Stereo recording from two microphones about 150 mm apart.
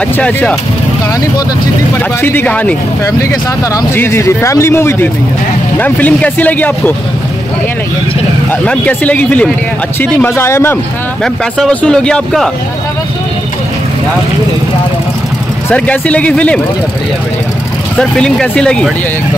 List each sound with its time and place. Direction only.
0.2 s speech: 10° left (ahead or behind)
2.2 s speech: 10° left (ahead or behind)
8.5 s speech: 10° left (ahead or behind)
11.5 s a man's voice: 5° left (ahead or behind)
15.7 s speech: 10° left (ahead or behind)
17.9 s a man's voice: 5° left (ahead or behind)